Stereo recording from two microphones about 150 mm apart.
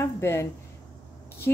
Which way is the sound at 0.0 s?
20° left (ahead or behind).